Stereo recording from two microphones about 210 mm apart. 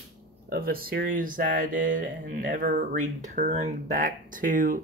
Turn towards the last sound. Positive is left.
turn(degrees=-40)  # may be behind; listen again after turning